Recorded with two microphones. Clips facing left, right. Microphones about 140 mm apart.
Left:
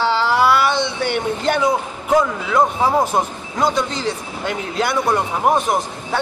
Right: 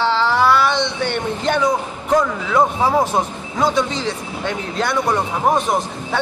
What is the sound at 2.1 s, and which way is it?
A man's voice, centre (ahead or behind).